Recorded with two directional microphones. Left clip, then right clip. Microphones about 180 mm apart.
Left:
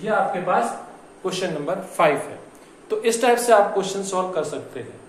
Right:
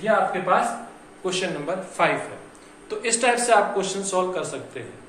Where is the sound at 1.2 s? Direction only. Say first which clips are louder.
Left 1 dB; 30° left (ahead or behind).